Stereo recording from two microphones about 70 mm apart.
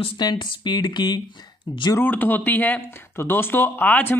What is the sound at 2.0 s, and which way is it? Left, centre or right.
Speech, left.